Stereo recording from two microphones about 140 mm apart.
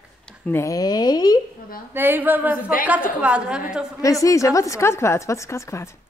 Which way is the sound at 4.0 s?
25° left (ahead or behind).